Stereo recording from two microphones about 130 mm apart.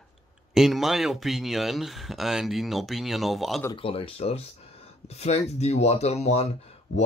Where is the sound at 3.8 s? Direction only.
45° left (ahead or behind).